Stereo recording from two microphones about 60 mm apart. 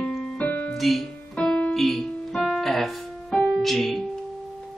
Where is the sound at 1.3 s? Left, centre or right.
Centre.